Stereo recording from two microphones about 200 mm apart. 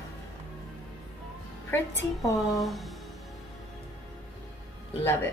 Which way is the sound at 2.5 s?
Centre (ahead or behind).